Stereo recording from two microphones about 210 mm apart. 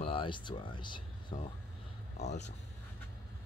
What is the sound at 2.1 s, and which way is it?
Speech, 35° left (ahead or behind).